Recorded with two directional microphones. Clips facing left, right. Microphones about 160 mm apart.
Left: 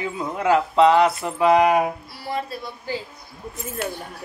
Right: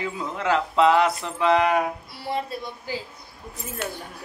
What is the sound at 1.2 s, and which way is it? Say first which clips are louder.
Speech: left 4 dB; 10° left (ahead or behind).